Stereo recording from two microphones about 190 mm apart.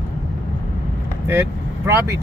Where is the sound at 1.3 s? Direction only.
10° right (ahead or behind).